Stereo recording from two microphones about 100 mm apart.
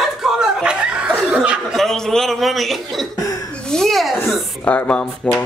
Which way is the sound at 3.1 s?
35° left (ahead or behind).